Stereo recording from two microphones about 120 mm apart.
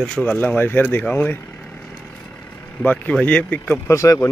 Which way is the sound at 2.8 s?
15° left (ahead or behind).